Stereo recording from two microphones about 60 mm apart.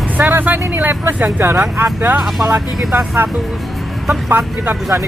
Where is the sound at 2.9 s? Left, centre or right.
Right.